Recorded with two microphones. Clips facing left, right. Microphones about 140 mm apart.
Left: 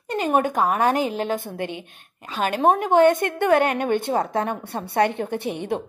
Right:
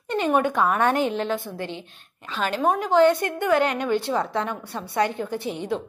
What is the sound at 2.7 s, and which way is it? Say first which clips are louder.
A woman's voice: right 1 dB; 55° left (ahead or behind).